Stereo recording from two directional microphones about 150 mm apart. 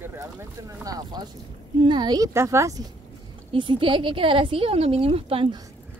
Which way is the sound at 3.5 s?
35° right (ahead or behind).